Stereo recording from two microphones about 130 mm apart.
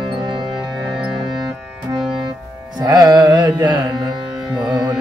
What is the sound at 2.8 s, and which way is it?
Music, 30° right (ahead or behind).